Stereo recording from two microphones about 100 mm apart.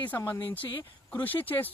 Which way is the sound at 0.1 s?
20° left (ahead or behind).